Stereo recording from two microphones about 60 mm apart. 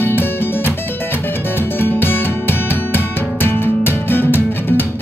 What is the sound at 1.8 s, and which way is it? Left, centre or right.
Music, left.